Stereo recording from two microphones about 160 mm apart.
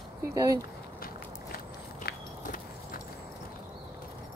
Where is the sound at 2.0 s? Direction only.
60° left (ahead or behind).